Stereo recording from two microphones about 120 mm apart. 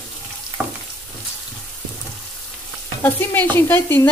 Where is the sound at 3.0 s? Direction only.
15° left (ahead or behind).